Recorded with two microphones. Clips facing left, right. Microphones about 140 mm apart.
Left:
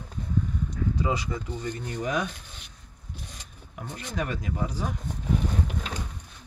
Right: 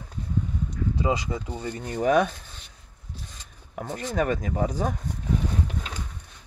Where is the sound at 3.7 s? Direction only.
50° right (ahead or behind).